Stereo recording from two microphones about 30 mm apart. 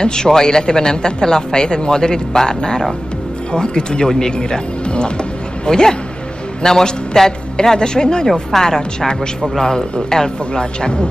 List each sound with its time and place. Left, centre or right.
0.0 s a woman's voice: left
5.7 s a woman's voice: centre